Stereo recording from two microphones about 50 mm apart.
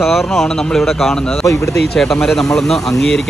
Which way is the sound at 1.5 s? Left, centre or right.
Left.